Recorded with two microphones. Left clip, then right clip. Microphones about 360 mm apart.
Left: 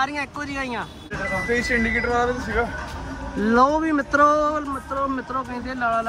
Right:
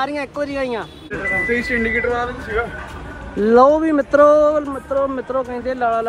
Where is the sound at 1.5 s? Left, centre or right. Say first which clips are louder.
Right 3 dB; left.